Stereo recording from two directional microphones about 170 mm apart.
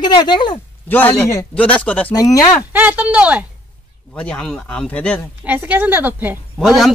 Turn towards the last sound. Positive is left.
turn(degrees=-10)  # may be behind; listen again after turning